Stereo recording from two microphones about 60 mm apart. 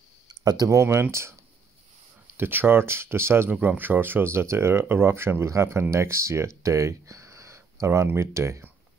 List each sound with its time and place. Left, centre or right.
0.4 s speech: right
0.7 s speech: right
2.3 s speech: right
3.4 s speech: right